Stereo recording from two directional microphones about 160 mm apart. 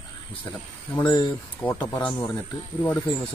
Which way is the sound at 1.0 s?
25° left (ahead or behind).